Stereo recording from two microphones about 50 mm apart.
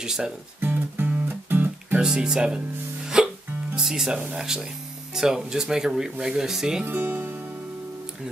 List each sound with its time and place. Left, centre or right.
0.0 s speech: centre
0.6 s music: right
2.0 s speech: centre
3.1 s hiccup: centre
3.7 s speech: centre
6.9 s speech: right